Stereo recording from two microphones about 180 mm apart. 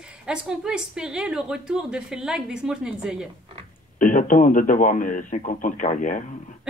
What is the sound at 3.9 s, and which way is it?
Speech, 45° left (ahead or behind).